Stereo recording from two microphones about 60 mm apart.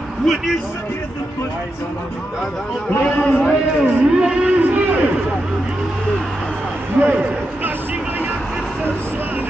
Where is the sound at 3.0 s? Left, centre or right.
Left.